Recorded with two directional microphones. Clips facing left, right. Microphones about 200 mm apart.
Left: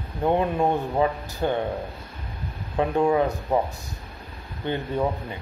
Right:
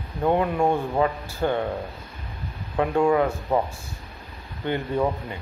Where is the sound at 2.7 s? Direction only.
20° left (ahead or behind).